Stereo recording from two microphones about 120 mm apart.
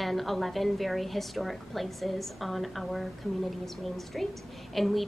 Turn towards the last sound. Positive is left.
turn(degrees=0)  # may be behind; listen again after turning